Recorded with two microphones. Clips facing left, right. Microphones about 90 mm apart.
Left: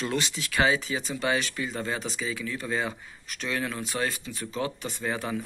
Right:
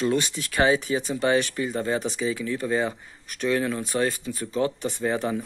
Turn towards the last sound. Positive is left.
turn(degrees=-25)  # may be behind; listen again after turning